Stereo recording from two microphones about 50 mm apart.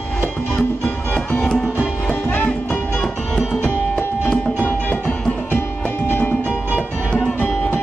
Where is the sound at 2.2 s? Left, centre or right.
Left.